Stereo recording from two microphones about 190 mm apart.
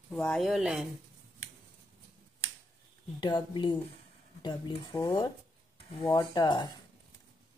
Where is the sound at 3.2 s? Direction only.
25° left (ahead or behind).